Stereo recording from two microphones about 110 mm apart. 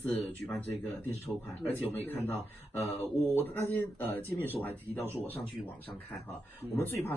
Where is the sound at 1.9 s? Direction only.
15° left (ahead or behind).